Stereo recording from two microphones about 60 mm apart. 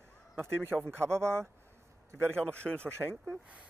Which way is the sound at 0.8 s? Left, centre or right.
Right.